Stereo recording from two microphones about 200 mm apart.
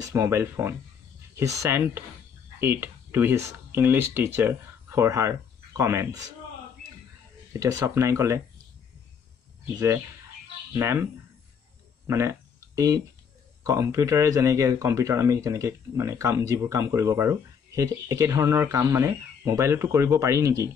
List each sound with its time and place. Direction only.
0.1 s speech: 15° right (ahead or behind)
7.5 s speech: 15° right (ahead or behind)
10.7 s speech: 10° right (ahead or behind)
12.1 s a sound: 15° right (ahead or behind)
13.7 s speech: 15° right (ahead or behind)